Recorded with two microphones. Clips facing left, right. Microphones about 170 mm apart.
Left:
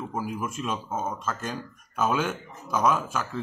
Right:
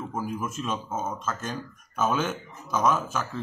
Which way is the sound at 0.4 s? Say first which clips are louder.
Even; centre (ahead or behind).